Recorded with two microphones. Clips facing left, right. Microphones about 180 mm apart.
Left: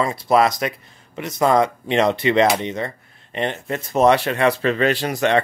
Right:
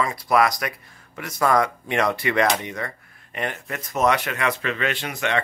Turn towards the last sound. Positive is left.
turn(degrees=35)  # may be behind; listen again after turning